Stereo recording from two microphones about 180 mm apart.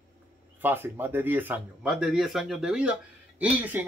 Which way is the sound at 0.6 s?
10° right (ahead or behind).